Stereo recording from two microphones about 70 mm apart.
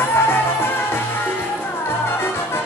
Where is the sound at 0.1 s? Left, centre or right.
Left.